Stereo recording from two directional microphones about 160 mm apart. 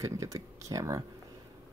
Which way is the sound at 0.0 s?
20° right (ahead or behind).